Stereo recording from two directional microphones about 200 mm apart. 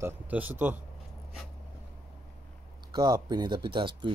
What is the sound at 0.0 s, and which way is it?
Speech, 10° right (ahead or behind).